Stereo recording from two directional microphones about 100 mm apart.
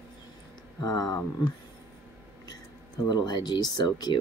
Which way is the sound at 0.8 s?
40° left (ahead or behind).